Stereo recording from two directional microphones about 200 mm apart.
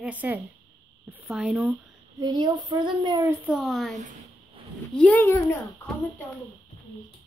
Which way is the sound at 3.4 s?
5° right (ahead or behind).